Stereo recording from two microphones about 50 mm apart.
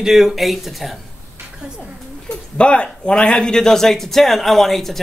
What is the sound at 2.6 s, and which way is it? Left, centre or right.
Speech, left.